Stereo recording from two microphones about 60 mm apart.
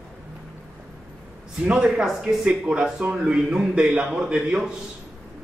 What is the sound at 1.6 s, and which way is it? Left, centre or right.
Speech, right.